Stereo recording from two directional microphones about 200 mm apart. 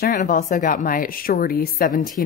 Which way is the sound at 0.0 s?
40° left (ahead or behind).